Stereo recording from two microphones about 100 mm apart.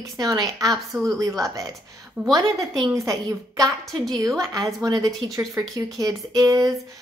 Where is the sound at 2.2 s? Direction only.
10° right (ahead or behind).